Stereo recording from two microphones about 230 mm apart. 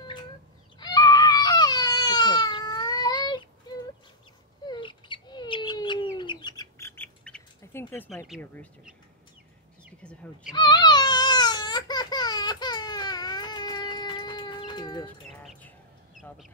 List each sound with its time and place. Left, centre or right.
0.7 s baby cry: centre
4.6 s bird: left
8.3 s speech: centre
10.0 s cat: centre
10.5 s baby cry: centre
15.3 s bird: centre